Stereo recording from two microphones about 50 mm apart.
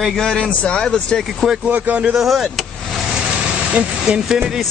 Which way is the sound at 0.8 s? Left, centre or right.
Centre.